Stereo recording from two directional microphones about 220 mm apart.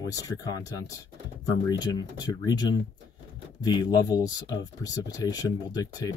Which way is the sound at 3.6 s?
20° left (ahead or behind).